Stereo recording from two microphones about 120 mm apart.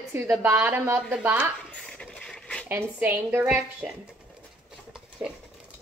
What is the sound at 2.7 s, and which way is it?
Speech, 15° right (ahead or behind).